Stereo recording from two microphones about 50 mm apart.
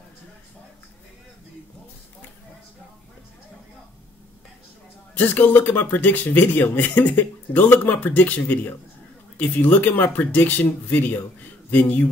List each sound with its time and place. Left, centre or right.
5.1 s speech: left
11.7 s speech: left